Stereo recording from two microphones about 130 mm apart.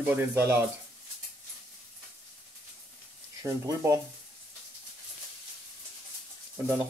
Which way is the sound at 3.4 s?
25° right (ahead or behind).